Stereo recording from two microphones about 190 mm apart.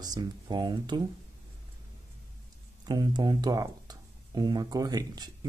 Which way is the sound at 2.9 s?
25° right (ahead or behind).